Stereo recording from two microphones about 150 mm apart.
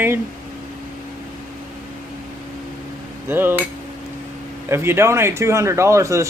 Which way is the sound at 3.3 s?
15° right (ahead or behind).